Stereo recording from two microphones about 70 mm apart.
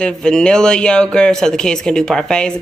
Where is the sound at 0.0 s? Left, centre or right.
Centre.